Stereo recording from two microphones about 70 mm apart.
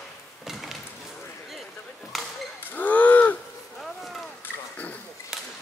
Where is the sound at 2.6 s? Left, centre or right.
Left.